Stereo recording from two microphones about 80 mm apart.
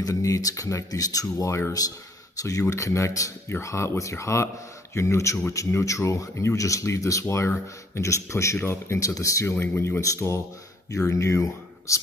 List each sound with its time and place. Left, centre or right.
0.0 s speech: left